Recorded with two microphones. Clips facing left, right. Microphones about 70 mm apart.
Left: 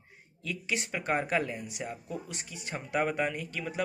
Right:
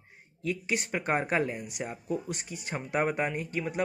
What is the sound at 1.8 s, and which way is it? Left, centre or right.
Speech, right.